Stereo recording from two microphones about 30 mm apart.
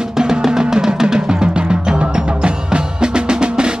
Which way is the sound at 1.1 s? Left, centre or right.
Right.